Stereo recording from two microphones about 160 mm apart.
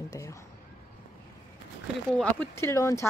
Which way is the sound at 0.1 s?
20° left (ahead or behind).